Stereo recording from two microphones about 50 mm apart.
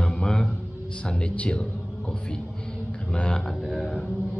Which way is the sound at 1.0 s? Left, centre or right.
Left.